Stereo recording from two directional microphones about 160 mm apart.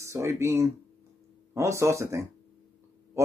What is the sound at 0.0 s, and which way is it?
Speech, 20° right (ahead or behind).